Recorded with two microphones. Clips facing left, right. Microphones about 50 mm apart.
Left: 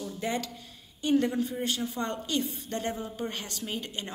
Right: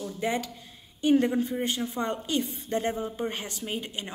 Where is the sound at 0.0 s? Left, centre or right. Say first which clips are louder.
Right 3 dB; centre.